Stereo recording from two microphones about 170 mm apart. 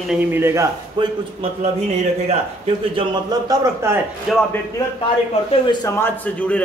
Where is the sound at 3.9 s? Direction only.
15° right (ahead or behind).